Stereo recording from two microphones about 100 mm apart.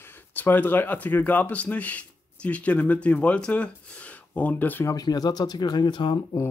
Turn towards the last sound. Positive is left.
turn(degrees=50)  # may be behind; listen again after turning